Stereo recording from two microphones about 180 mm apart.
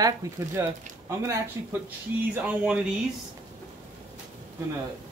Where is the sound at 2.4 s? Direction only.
5° right (ahead or behind).